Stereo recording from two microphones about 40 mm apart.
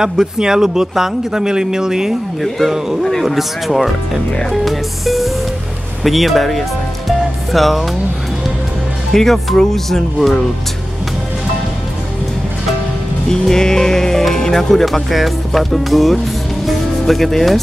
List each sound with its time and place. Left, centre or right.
0.0 s a man's voice: centre
2.6 s speech: centre
7.1 s music: centre
9.1 s speech: centre
13.3 s speech: centre
16.6 s music: centre